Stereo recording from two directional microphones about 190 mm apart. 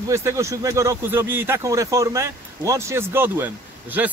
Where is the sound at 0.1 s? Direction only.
15° right (ahead or behind).